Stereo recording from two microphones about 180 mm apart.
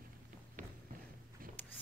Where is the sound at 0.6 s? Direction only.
45° right (ahead or behind).